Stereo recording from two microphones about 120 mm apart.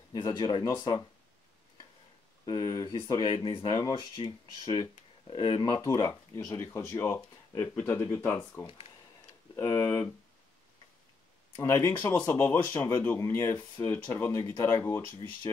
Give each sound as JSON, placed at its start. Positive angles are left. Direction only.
{"t": 0.1, "sound": "speech", "side_deg": 35}
{"t": 2.4, "sound": "speech", "side_deg": 30}
{"t": 5.8, "sound": "speech", "side_deg": 25}
{"t": 11.5, "sound": "speech", "side_deg": 25}